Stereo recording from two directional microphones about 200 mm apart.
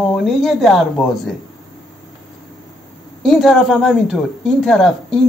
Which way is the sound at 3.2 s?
Centre (ahead or behind).